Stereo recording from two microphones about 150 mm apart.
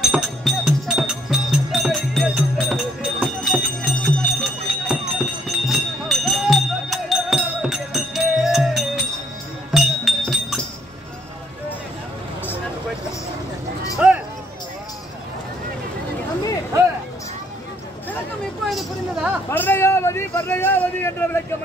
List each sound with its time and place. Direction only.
0.0 s music: centre (ahead or behind)
3.2 s bell: 5° right (ahead or behind)
4.8 s music: 5° right (ahead or behind)
13.9 s a sound: 5° right (ahead or behind)
18.7 s vehicle: 5° right (ahead or behind)
19.5 s a sound: 15° left (ahead or behind)